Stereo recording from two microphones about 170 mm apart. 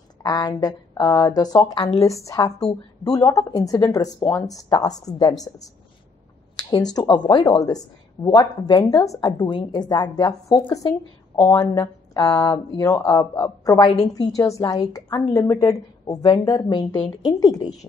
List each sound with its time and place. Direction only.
0.2 s speech: 25° left (ahead or behind)
6.5 s speech: 25° left (ahead or behind)